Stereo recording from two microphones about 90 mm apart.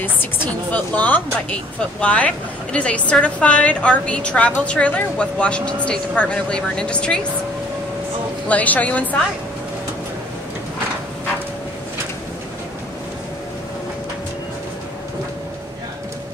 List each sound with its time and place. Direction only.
0.0 s a woman's voice: 20° left (ahead or behind)
8.5 s a woman's voice: 15° left (ahead or behind)